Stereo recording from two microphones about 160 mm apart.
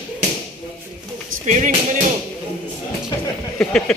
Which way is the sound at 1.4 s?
45° right (ahead or behind).